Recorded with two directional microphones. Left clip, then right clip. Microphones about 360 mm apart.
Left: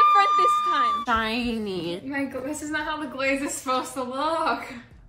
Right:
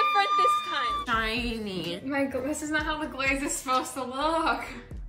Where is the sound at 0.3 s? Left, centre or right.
Centre.